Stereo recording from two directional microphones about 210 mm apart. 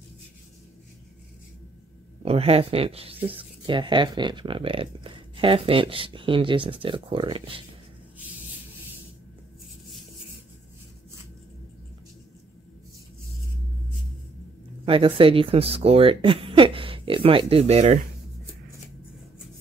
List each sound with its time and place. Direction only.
2.2 s speech: 30° right (ahead or behind)
14.9 s speech: 25° right (ahead or behind)